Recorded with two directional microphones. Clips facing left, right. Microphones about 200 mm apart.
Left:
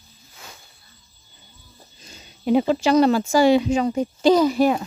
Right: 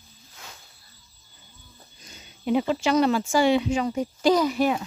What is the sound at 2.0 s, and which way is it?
Speech, 40° left (ahead or behind).